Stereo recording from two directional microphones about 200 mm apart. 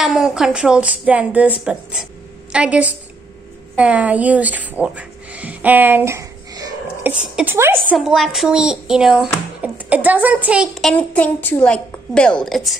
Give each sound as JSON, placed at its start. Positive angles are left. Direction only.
{"t": 0.0, "sound": "a child's voice", "side_deg": 0}